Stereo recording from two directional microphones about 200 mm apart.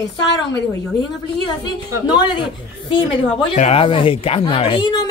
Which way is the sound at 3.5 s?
30° left (ahead or behind).